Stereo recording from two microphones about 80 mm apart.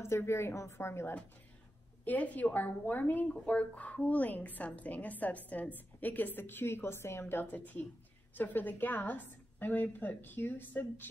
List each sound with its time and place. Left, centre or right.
0.0 s a woman's voice: left
2.0 s a woman's voice: centre